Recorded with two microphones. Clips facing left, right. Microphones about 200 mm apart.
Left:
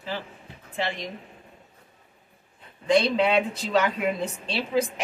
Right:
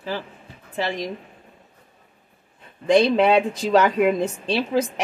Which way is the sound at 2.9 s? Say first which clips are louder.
Right 5 dB; 45° right (ahead or behind).